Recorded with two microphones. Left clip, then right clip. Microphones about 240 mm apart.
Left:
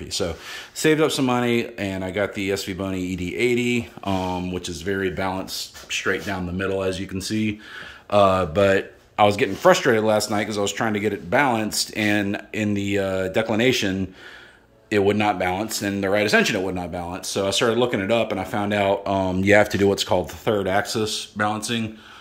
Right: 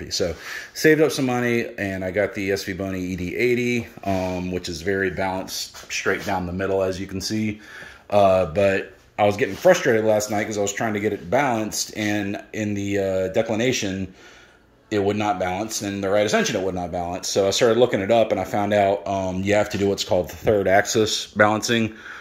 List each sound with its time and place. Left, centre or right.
0.8 s speech: centre
19.0 s speech: centre
20.4 s speech: centre